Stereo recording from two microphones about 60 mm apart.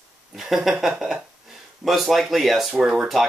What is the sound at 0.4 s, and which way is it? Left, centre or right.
Speech, centre.